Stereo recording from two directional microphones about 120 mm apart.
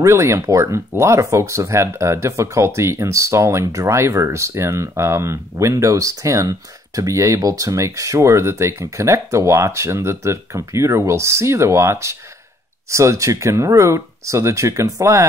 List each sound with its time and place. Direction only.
0.0 s speech: 25° right (ahead or behind)